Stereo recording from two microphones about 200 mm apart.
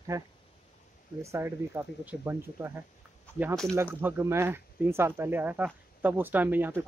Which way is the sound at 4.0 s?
10° right (ahead or behind).